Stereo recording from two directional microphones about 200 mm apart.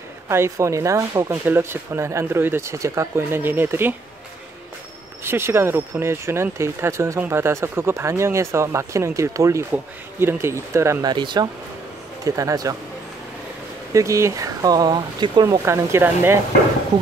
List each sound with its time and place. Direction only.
0.3 s speech: 15° right (ahead or behind)
5.2 s speech: 10° right (ahead or behind)
13.9 s speech: 15° right (ahead or behind)